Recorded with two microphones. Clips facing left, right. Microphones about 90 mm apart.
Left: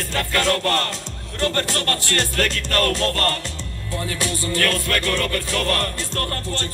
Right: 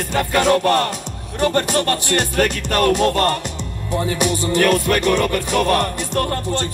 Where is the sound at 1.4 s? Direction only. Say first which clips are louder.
Right 5 dB; 15° right (ahead or behind).